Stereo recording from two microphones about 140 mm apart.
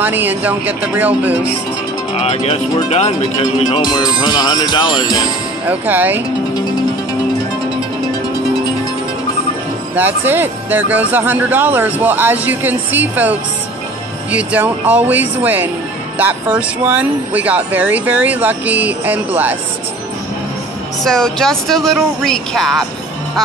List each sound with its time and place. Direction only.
0.0 s speech: 15° right (ahead or behind)
2.1 s speech: 50° left (ahead or behind)
3.8 s speech: 30° left (ahead or behind)
5.7 s speech: 15° right (ahead or behind)
9.9 s speech: 15° right (ahead or behind)
21.0 s speech: 5° left (ahead or behind)